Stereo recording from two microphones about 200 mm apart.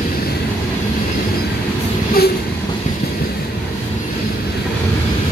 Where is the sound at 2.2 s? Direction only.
50° left (ahead or behind).